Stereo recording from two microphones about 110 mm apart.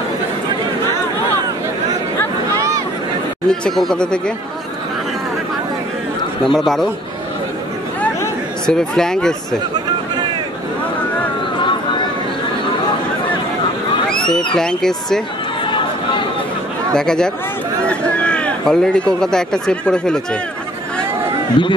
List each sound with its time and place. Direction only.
2.5 s a sound: 30° right (ahead or behind)
3.4 s speech: 5° left (ahead or behind)
6.4 s speech: 5° left (ahead or behind)
8.6 s speech: 5° left (ahead or behind)
14.3 s speech: 5° left (ahead or behind)
16.9 s speech: 5° left (ahead or behind)
21.6 s speech: 50° left (ahead or behind)